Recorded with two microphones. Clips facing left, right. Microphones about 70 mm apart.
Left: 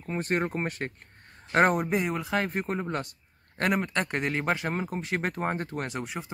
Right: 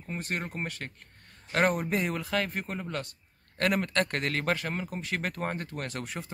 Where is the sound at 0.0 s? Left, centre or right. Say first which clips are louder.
Left 6 dB; left.